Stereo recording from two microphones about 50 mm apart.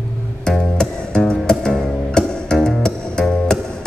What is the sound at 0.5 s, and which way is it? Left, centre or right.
Music, centre.